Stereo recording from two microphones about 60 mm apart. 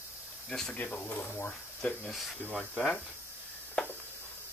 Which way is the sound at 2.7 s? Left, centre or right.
Centre.